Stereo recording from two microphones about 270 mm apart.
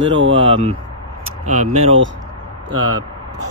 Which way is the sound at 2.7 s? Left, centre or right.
Right.